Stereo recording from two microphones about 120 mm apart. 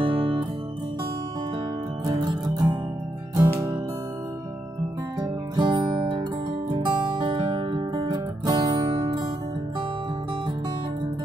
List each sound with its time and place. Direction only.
0.0 s music: 45° right (ahead or behind)
2.0 s music: 35° right (ahead or behind)
5.6 s music: 40° right (ahead or behind)
6.7 s guitar: 45° right (ahead or behind)